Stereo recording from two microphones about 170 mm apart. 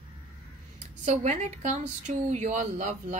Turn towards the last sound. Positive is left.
turn(degrees=-45)  # may be behind; listen again after turning